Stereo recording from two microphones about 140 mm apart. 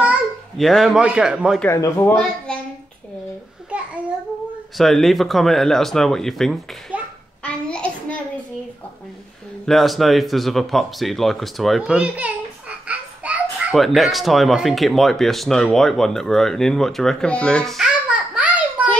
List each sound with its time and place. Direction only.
0.6 s speech: centre (ahead or behind)
1.7 s speech: 20° left (ahead or behind)
2.1 s a child's voice: 5° left (ahead or behind)
4.7 s speech: centre (ahead or behind)
6.9 s hands: 10° right (ahead or behind)
7.4 s a sound: 10° left (ahead or behind)
9.7 s speech: centre (ahead or behind)
13.7 s speech: centre (ahead or behind)